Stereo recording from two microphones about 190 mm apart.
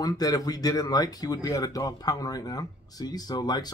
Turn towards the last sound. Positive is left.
turn(degrees=20)  # may be behind; listen again after turning